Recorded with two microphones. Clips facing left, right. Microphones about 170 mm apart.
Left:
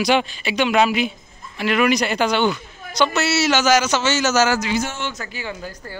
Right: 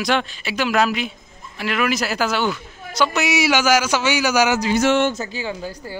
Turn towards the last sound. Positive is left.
turn(degrees=-15)  # may be behind; listen again after turning